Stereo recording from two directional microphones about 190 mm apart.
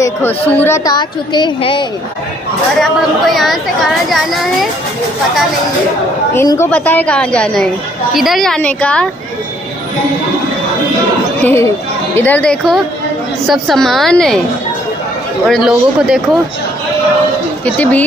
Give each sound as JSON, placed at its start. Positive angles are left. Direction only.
{"t": 0.0, "sound": "a woman's voice", "side_deg": 10}
{"t": 2.8, "sound": "speech", "side_deg": 0}
{"t": 6.3, "sound": "a woman's voice", "side_deg": 15}
{"t": 11.4, "sound": "a woman's voice", "side_deg": 15}
{"t": 15.4, "sound": "speech", "side_deg": 0}
{"t": 17.6, "sound": "a woman's voice", "side_deg": 10}